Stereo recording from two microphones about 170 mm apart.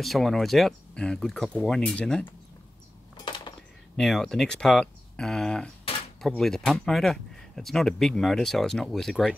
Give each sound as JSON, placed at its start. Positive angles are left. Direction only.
{"t": 0.0, "sound": "speech", "side_deg": 0}
{"t": 3.2, "sound": "a sound", "side_deg": 25}
{"t": 3.9, "sound": "speech", "side_deg": 5}